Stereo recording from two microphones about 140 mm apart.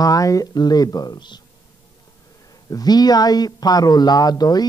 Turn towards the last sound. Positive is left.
turn(degrees=30)  # may be behind; listen again after turning